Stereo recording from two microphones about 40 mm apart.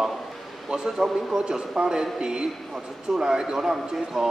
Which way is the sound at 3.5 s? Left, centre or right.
Centre.